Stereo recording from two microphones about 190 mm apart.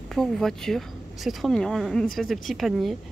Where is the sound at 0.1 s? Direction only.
Centre (ahead or behind).